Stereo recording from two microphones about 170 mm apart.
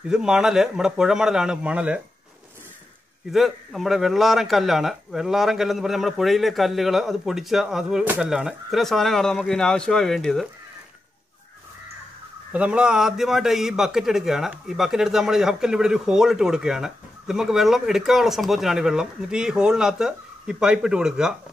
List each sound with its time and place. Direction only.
0.1 s a man's voice: 5° right (ahead or behind)
3.3 s a man's voice: centre (ahead or behind)
12.5 s a man's voice: 5° right (ahead or behind)